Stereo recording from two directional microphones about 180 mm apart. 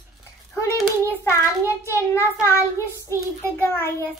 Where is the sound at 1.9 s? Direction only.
15° left (ahead or behind).